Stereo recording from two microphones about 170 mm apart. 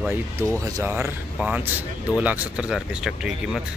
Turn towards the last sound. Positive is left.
turn(degrees=-5)  # may be behind; listen again after turning